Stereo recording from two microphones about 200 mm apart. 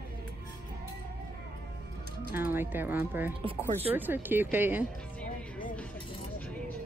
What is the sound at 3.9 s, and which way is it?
Speech, 10° right (ahead or behind).